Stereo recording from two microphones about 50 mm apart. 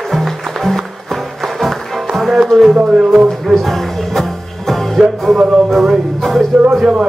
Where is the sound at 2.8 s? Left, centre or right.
Centre.